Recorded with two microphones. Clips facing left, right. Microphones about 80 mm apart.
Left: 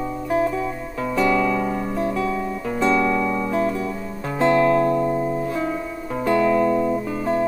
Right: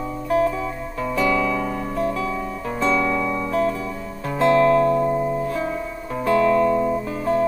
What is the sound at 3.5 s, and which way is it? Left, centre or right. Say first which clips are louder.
Music: even; centre.